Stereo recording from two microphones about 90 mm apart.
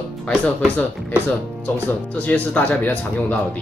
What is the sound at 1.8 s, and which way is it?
Speech, 15° left (ahead or behind).